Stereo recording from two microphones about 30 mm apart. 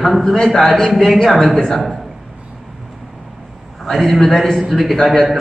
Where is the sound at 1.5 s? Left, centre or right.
Centre.